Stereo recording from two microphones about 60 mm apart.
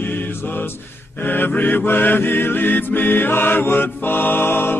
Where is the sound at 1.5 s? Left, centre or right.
Left.